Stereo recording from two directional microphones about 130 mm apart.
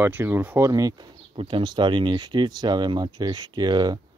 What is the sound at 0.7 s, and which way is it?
Speech, 30° right (ahead or behind).